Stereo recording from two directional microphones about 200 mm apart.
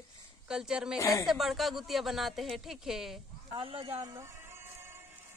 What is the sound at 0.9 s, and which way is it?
Speech, 15° left (ahead or behind).